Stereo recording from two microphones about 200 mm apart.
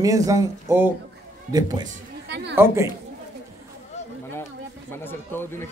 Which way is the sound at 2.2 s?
60° right (ahead or behind).